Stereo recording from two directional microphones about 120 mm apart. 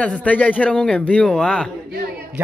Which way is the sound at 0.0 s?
10° left (ahead or behind).